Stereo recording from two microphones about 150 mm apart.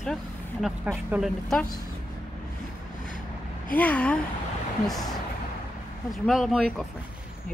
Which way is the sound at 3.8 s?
10° left (ahead or behind).